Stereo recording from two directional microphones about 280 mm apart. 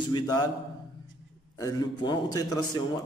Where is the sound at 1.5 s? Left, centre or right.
Centre.